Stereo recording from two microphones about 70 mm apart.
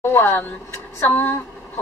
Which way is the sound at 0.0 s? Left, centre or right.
Left.